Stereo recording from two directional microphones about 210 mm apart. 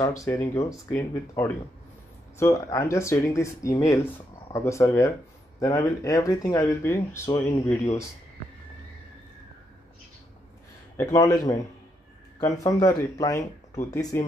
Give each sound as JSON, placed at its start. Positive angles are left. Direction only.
{"t": 0.0, "sound": "speech", "side_deg": 15}
{"t": 11.1, "sound": "speech", "side_deg": 15}